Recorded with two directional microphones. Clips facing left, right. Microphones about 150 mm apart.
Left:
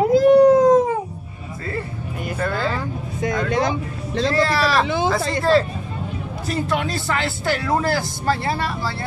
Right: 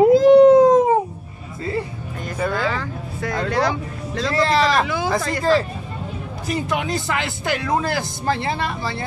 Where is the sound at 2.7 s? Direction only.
20° left (ahead or behind).